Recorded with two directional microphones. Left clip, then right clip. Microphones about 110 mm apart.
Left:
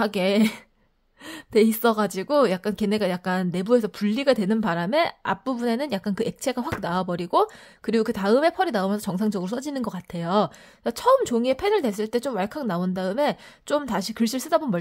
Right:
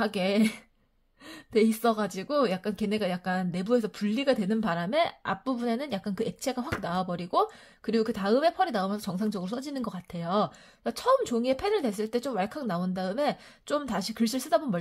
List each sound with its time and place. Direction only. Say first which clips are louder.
0.0 s speech: left 5 dB; 40° left (ahead or behind)